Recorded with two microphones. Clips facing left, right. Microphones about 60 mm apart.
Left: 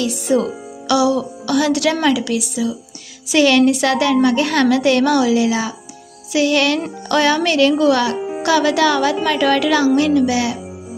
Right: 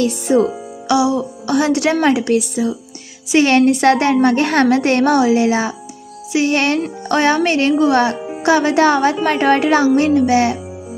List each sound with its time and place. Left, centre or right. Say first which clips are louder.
0.0 s speech: right 3 dB; right